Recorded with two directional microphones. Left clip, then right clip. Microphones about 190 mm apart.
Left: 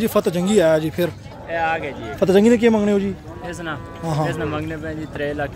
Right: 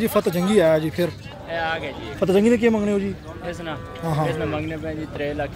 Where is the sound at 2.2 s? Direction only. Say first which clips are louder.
Left 3 dB; 20° left (ahead or behind).